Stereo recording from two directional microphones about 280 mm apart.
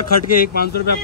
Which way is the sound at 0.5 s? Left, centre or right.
Left.